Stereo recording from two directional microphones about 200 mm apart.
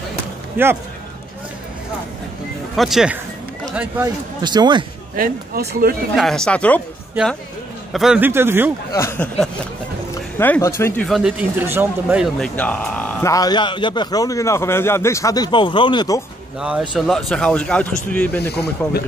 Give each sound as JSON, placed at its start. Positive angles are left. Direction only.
{"t": 0.6, "sound": "speech", "side_deg": -10}
{"t": 2.7, "sound": "speech", "side_deg": 0}
{"t": 4.4, "sound": "speech", "side_deg": -20}
{"t": 5.1, "sound": "speech", "side_deg": -45}
{"t": 6.1, "sound": "speech", "side_deg": 0}
{"t": 7.9, "sound": "speech", "side_deg": -5}
{"t": 8.9, "sound": "speech", "side_deg": 15}
{"t": 11.1, "sound": "speech", "side_deg": 0}
{"t": 12.4, "sound": "speech", "side_deg": 5}
{"t": 16.5, "sound": "speech", "side_deg": -5}